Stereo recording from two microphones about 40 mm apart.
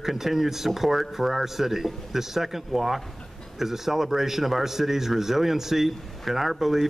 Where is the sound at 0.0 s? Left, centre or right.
Centre.